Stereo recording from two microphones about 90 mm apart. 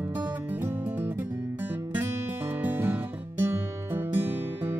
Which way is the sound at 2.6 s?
25° right (ahead or behind).